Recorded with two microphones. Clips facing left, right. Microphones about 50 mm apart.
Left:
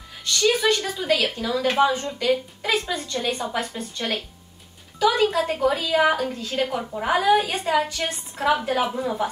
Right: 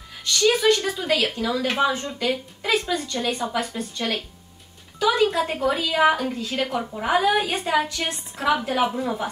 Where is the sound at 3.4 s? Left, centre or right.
Centre.